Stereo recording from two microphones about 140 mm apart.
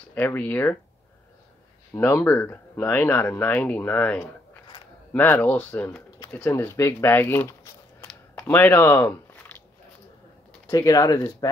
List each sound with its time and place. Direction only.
0.1 s speech: 15° left (ahead or behind)
2.0 s speech: 15° left (ahead or behind)
10.7 s speech: 25° left (ahead or behind)